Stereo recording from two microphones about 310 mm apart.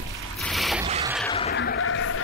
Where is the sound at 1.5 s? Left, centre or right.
Left.